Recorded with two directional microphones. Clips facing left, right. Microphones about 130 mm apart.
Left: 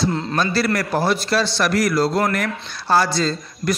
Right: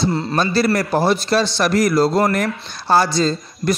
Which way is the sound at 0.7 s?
25° right (ahead or behind).